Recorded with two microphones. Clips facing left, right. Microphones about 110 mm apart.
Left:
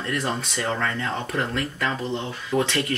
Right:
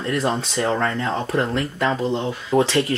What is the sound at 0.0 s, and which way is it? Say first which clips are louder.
Speech: right 5 dB; 30° right (ahead or behind).